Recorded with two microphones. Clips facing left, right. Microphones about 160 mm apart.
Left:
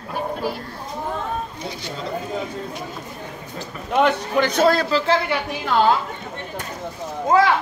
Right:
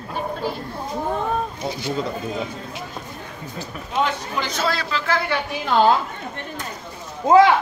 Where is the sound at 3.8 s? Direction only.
60° left (ahead or behind); by 5.1 s 35° left (ahead or behind).